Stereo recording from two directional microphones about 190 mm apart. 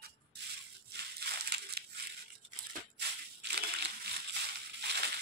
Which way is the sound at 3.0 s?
60° right (ahead or behind).